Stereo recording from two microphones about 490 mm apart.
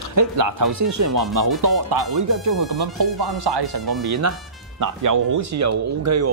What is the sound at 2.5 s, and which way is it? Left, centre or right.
Speech, right.